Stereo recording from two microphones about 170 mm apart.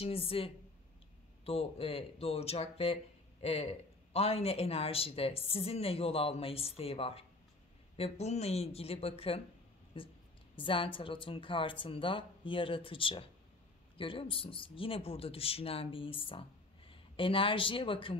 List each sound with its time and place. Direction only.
0.0 s speech: 35° left (ahead or behind)